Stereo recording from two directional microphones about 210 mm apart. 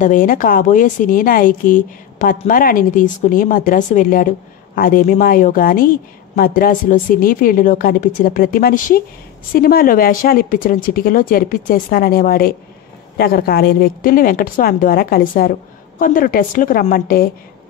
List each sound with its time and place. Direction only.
0.0 s a woman's voice: 40° left (ahead or behind)